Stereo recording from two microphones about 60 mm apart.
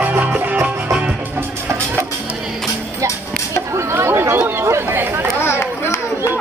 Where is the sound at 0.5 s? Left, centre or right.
Right.